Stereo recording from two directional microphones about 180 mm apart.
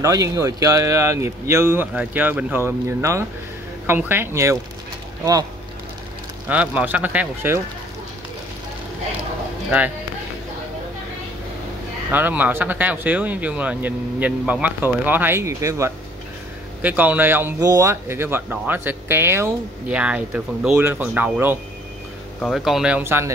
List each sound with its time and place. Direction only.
0.0 s speech: 20° right (ahead or behind)
6.5 s speech: 10° right (ahead or behind)
12.1 s speech: 10° right (ahead or behind)
22.4 s speech: centre (ahead or behind)